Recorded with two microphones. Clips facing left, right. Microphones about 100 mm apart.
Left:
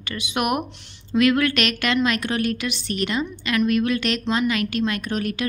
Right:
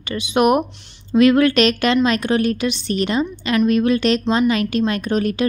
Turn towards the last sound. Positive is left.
turn(degrees=-30)  # may be behind; listen again after turning